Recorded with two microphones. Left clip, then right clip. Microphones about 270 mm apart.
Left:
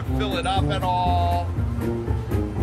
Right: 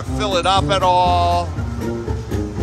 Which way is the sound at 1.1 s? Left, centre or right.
Right.